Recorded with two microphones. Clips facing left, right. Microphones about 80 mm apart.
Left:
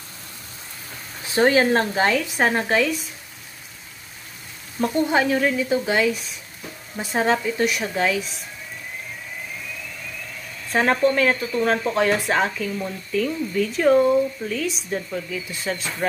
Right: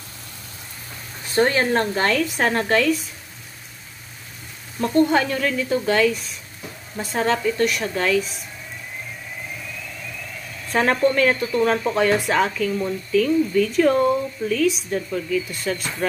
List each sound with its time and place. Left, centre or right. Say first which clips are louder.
1.7 s speech: left 1 dB; centre
4.7 s speech: right 2 dB; centre
10.7 s speech: even; centre